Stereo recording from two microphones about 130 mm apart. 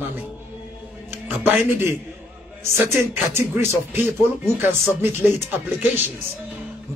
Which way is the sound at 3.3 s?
15° right (ahead or behind).